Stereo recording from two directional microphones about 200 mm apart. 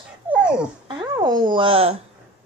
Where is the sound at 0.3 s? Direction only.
5° right (ahead or behind).